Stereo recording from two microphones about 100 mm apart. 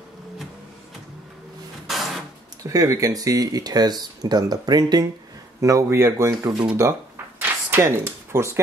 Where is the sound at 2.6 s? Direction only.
35° right (ahead or behind).